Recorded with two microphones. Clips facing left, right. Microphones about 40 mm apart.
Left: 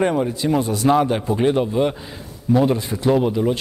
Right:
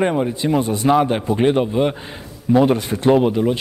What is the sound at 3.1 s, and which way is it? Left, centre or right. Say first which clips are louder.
Speech: right 3 dB; right.